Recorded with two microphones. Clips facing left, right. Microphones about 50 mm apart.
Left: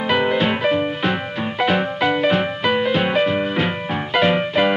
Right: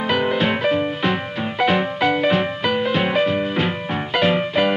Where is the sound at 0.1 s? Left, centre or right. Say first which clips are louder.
Left 2 dB; centre.